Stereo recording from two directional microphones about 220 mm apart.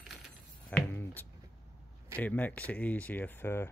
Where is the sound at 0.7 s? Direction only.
5° left (ahead or behind).